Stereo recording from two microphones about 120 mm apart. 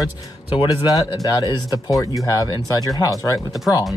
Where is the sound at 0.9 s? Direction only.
30° left (ahead or behind).